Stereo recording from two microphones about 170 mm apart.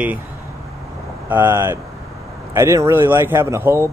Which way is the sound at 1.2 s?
15° right (ahead or behind).